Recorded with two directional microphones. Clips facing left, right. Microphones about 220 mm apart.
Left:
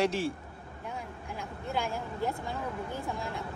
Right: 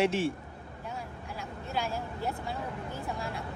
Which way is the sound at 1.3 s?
15° left (ahead or behind).